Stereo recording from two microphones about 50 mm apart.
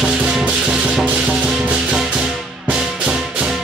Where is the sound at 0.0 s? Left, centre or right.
Centre.